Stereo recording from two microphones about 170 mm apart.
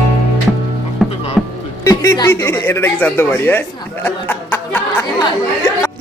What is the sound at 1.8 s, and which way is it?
Speech, 20° left (ahead or behind).